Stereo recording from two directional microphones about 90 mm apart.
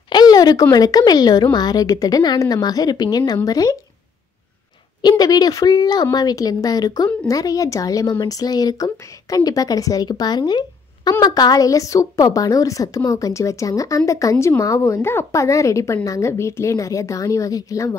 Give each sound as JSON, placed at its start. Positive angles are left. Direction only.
{"t": 0.1, "sound": "a woman's voice", "side_deg": 50}
{"t": 5.0, "sound": "a woman's voice", "side_deg": 45}
{"t": 8.9, "sound": "a woman's voice", "side_deg": 35}